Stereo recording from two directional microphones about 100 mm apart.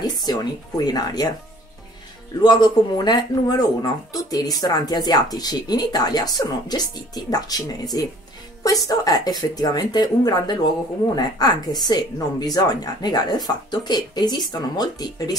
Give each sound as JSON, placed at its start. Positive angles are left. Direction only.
{"t": 0.0, "sound": "speech", "side_deg": 40}
{"t": 2.4, "sound": "speech", "side_deg": 45}